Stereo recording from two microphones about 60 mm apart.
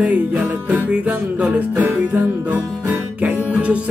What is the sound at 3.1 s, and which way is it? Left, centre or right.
Music, right.